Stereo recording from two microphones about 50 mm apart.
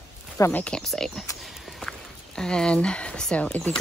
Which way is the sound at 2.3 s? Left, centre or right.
Centre.